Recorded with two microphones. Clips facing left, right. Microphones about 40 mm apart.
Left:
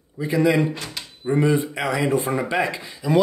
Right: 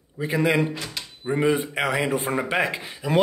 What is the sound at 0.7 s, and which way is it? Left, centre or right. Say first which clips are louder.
Drawer open or close: even; centre.